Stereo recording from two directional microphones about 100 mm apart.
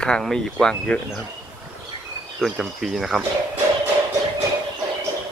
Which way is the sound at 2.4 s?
5° right (ahead or behind).